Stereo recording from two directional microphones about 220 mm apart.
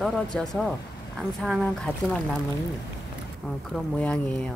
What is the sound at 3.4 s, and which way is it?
Speech, 5° left (ahead or behind).